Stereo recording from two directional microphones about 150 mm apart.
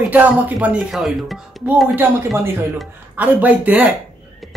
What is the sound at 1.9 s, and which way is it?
Speech, 15° right (ahead or behind).